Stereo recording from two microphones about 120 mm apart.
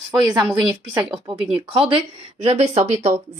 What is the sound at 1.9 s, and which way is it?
Speech, 60° right (ahead or behind).